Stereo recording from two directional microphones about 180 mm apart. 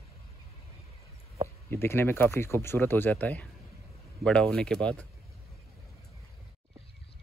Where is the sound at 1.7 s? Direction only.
10° left (ahead or behind).